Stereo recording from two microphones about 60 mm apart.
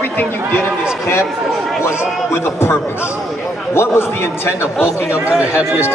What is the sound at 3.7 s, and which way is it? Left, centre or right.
A man's voice, left.